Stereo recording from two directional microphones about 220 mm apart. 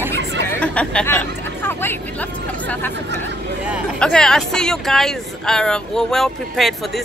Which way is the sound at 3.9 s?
5° left (ahead or behind).